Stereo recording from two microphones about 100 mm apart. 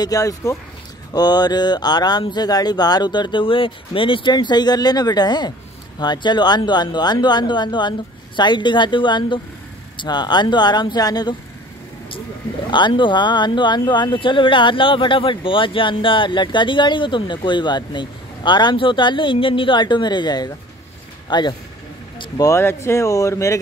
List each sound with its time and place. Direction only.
0.0 s speech: 35° left (ahead or behind)
1.1 s speech: 45° left (ahead or behind)
12.7 s speech: 50° left (ahead or behind)
22.4 s speech: 25° left (ahead or behind)